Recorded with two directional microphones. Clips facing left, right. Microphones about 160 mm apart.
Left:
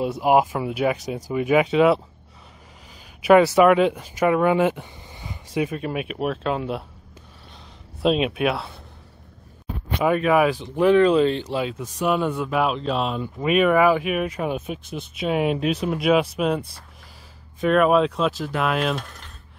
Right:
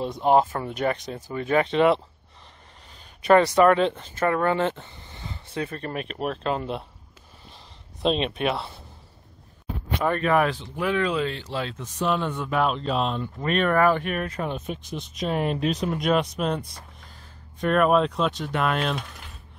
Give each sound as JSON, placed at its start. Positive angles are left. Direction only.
{"t": 0.0, "sound": "speech", "side_deg": 5}
{"t": 3.2, "sound": "speech", "side_deg": 5}
{"t": 8.0, "sound": "speech", "side_deg": 5}
{"t": 9.9, "sound": "speech", "side_deg": 10}
{"t": 10.8, "sound": "speech", "side_deg": 30}
{"t": 11.4, "sound": "speech", "side_deg": 15}